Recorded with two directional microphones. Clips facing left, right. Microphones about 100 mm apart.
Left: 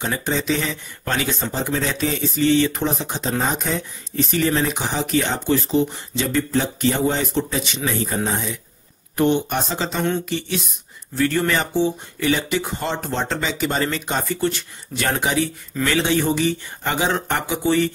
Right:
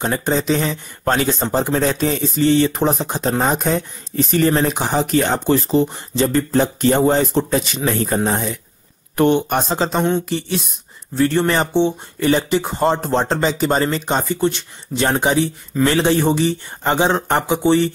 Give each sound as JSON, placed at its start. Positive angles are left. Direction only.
{"t": 0.0, "sound": "speech", "side_deg": -40}
{"t": 9.7, "sound": "speech", "side_deg": -35}